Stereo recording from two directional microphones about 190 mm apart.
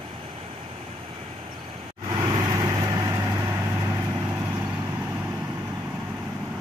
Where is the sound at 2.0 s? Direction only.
20° right (ahead or behind).